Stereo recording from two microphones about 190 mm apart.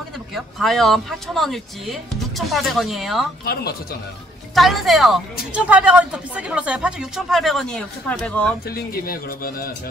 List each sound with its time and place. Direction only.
0.3 s speech: centre (ahead or behind)
3.5 s speech: 55° left (ahead or behind)
4.6 s speech: centre (ahead or behind)
8.6 s speech: 55° left (ahead or behind)